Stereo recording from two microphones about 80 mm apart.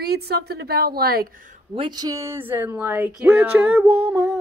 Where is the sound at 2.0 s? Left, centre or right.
Right.